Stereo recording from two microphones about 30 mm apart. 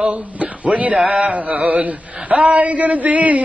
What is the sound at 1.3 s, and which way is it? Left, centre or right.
Speech, right.